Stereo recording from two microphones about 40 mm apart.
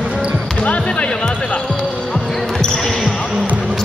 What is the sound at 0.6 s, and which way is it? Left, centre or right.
Music, left.